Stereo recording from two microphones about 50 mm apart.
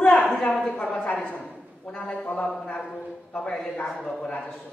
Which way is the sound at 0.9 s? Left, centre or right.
Left.